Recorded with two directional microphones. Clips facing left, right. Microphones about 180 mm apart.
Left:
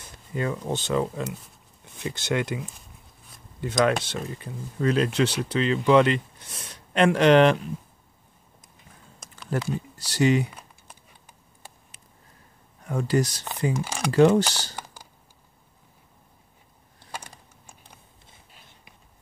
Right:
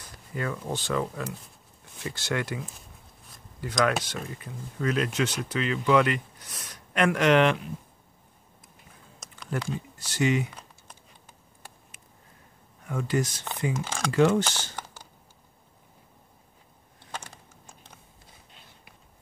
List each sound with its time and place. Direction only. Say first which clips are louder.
0.0 s speech: left 4 dB; 25° left (ahead or behind)
3.6 s speech: left 3 dB; 25° left (ahead or behind)
9.5 s speech: left 4 dB; 35° left (ahead or behind)
12.8 s speech: left 4 dB; 35° left (ahead or behind)
13.7 s speech: left 2 dB; 10° left (ahead or behind)
14.1 s speech: left 4 dB; 35° left (ahead or behind)
17.1 s a sound: left 1 dB; 10° left (ahead or behind)